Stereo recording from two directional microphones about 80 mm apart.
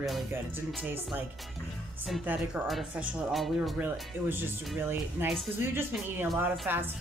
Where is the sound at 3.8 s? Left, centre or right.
Right.